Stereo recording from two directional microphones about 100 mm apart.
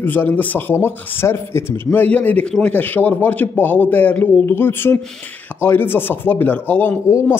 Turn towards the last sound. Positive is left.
turn(degrees=20)  # may be behind; listen again after turning